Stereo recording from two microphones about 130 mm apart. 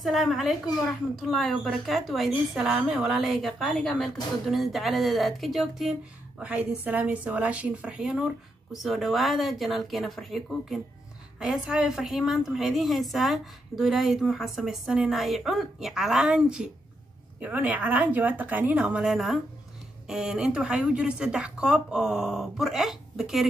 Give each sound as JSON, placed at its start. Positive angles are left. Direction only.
{"t": 0.0, "sound": "a woman's voice", "side_deg": 0}
{"t": 6.8, "sound": "a woman's voice", "side_deg": -10}